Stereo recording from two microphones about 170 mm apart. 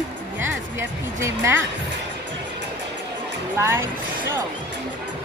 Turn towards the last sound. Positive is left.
turn(degrees=-15)  # may be behind; listen again after turning